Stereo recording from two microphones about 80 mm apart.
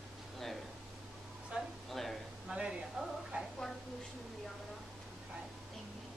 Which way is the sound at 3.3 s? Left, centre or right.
Centre.